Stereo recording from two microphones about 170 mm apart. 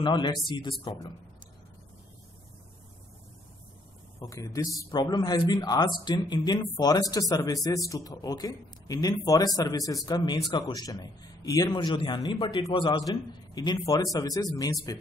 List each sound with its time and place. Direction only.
0.0 s speech: 25° left (ahead or behind)
4.2 s speech: 20° left (ahead or behind)